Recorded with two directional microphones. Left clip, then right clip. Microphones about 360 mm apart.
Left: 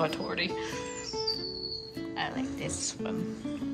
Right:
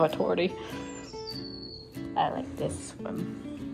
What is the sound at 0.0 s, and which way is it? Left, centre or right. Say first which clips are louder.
Speech: right 5 dB; centre.